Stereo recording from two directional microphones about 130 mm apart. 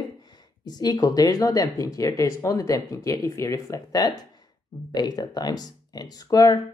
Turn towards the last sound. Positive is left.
turn(degrees=30)  # may be behind; listen again after turning